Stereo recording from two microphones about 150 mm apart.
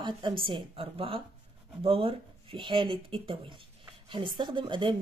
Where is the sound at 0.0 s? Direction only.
35° right (ahead or behind).